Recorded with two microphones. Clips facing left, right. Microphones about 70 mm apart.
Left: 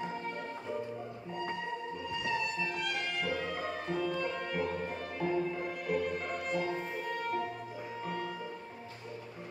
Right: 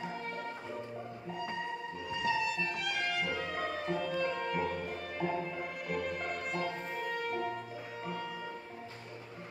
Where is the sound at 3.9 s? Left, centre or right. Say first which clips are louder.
Left 1 dB; centre.